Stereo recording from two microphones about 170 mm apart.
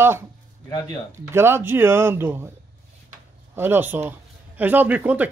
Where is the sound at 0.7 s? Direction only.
25° left (ahead or behind).